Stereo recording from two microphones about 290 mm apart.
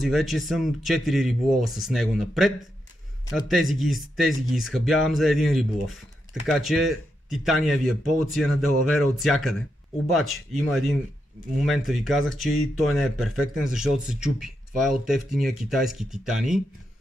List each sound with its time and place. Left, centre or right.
0.0 s speech: centre
11.6 s speech: centre